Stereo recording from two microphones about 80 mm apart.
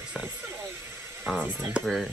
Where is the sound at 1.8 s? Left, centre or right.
Centre.